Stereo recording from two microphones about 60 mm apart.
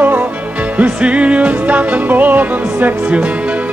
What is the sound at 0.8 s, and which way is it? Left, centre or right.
Music, centre.